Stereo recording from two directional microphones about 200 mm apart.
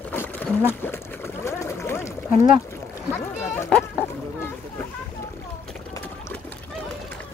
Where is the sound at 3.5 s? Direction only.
10° left (ahead or behind).